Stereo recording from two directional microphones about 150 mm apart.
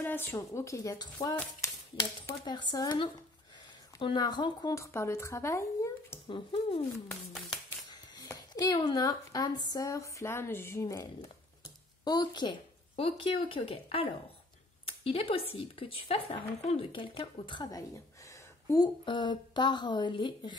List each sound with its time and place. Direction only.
0.0 s a woman's voice: 15° left (ahead or behind); by 4.7 s 30° left (ahead or behind)
4.7 s speech: 20° left (ahead or behind)
6.2 s a woman's voice: 35° left (ahead or behind)
11.6 s a sound: 30° left (ahead or behind)
13.7 s a woman's voice: 40° left (ahead or behind); by 18.9 s 20° left (ahead or behind)
19.0 s a woman's voice: 30° left (ahead or behind)